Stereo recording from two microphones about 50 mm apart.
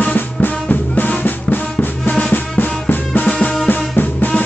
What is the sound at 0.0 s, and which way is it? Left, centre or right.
Music, left.